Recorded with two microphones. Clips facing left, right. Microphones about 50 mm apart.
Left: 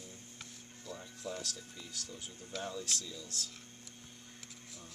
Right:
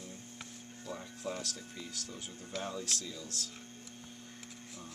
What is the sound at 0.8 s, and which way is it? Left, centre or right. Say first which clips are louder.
Speech: right 3 dB; right.